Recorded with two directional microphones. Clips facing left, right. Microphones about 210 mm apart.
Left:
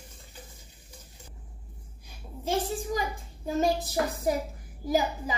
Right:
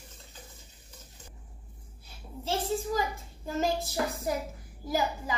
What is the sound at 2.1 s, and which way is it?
A woman's voice, 15° left (ahead or behind).